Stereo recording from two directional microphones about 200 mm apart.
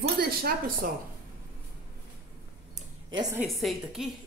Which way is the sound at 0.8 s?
45° right (ahead or behind).